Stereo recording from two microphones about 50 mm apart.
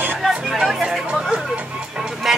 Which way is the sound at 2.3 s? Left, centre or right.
Centre.